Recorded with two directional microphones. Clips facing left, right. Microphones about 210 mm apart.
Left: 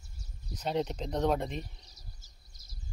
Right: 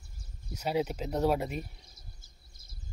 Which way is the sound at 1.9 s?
55° right (ahead or behind).